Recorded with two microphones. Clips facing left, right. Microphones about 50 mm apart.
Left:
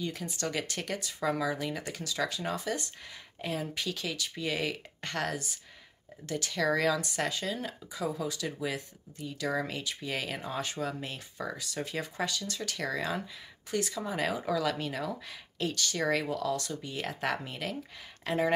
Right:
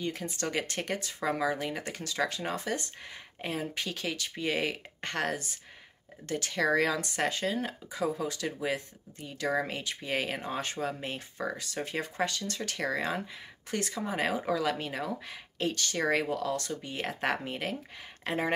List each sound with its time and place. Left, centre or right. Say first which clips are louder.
0.0 s speech: right 1 dB; right
13.7 s speech: even; right